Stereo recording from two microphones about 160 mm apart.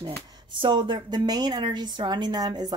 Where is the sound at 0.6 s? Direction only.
30° right (ahead or behind).